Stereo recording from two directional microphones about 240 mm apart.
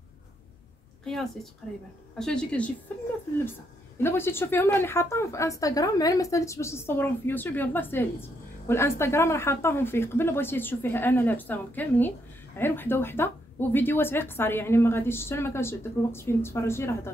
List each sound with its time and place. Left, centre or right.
1.0 s a woman's voice: centre
4.0 s speech: centre